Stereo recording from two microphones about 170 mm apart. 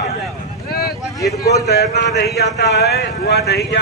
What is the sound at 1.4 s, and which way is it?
A man's voice, 75° left (ahead or behind).